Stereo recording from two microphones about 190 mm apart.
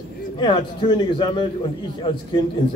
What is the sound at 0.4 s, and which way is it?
A man's voice, 25° left (ahead or behind).